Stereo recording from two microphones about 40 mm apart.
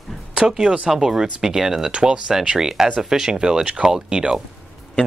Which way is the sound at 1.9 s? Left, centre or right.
Right.